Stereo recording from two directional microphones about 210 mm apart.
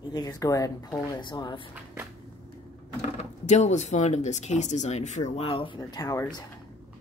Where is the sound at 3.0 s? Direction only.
35° left (ahead or behind); by 6.2 s 15° left (ahead or behind).